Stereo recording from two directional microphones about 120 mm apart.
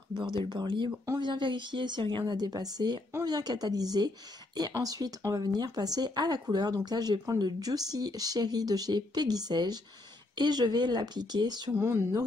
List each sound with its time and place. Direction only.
0.4 s speech: 40° right (ahead or behind)
11.8 s speech: 25° right (ahead or behind)